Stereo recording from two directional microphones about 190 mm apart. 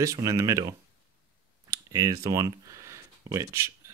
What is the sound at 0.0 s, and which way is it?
Speech, 15° right (ahead or behind).